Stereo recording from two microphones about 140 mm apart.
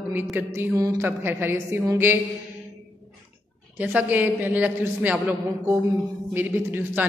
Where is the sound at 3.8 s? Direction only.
10° right (ahead or behind).